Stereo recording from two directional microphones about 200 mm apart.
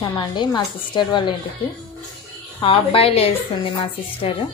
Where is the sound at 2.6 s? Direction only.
25° left (ahead or behind).